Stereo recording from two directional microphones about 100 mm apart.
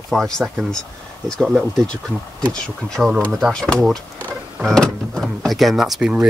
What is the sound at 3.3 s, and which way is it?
Speech, 5° right (ahead or behind).